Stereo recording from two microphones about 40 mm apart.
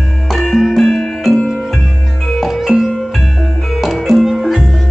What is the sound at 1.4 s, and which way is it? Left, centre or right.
Music, centre.